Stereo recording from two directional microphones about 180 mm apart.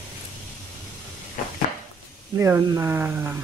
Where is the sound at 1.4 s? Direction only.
50° left (ahead or behind).